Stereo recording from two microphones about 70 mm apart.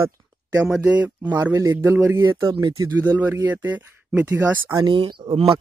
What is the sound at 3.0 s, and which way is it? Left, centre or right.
Speech, right.